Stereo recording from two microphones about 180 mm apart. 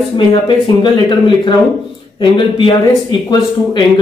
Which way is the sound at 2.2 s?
30° left (ahead or behind).